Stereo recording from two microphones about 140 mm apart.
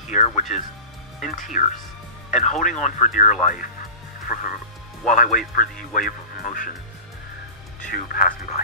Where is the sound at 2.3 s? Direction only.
55° left (ahead or behind).